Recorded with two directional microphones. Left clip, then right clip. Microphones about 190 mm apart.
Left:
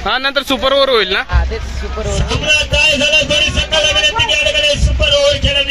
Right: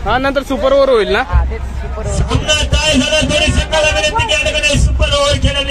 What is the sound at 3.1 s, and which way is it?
Music, 55° right (ahead or behind).